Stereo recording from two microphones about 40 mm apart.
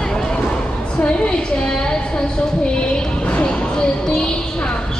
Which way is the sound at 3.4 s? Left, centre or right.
Left.